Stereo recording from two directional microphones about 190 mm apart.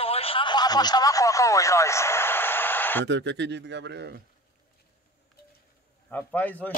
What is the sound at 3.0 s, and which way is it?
Speech, 70° right (ahead or behind).